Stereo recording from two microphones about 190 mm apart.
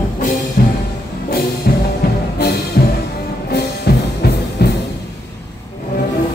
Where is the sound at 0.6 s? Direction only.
55° left (ahead or behind).